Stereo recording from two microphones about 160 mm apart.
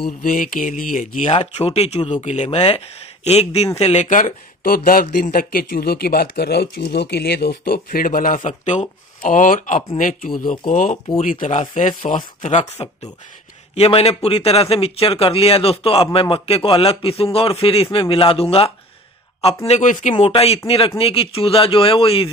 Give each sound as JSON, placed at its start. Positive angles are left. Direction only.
{"t": 0.2, "sound": "speech", "side_deg": 60}
{"t": 1.3, "sound": "speech", "side_deg": 40}
{"t": 20.2, "sound": "speech", "side_deg": 35}